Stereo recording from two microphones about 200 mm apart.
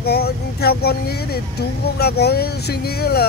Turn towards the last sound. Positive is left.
turn(degrees=50)  # may be behind; listen again after turning